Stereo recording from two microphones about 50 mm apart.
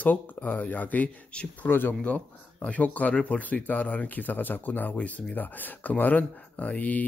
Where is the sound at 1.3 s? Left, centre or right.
Left.